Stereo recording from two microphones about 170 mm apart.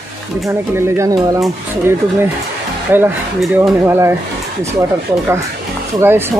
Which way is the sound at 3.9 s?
15° right (ahead or behind).